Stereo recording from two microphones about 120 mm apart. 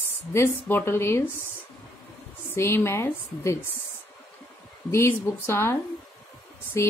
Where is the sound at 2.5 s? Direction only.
20° left (ahead or behind).